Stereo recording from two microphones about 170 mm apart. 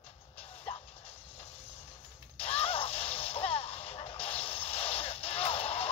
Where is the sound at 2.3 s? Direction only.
35° left (ahead or behind).